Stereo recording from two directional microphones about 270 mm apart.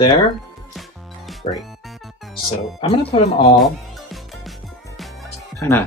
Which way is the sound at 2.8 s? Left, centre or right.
Left.